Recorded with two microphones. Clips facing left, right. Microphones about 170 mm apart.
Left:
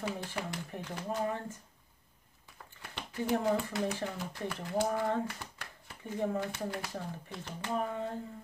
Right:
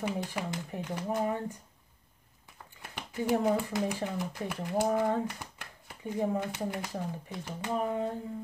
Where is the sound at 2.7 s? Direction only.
15° right (ahead or behind).